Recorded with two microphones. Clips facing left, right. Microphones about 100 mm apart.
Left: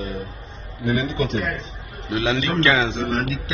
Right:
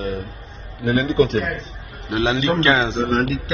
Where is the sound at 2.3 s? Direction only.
20° right (ahead or behind).